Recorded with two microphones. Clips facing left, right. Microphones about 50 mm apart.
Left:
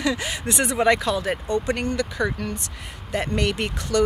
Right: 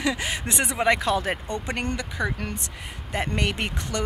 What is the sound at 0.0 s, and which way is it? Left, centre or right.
Speech, right.